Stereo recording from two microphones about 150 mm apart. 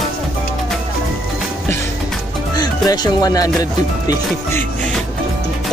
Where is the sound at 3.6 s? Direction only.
25° left (ahead or behind).